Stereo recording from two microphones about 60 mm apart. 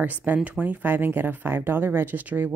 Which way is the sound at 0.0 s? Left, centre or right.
Right.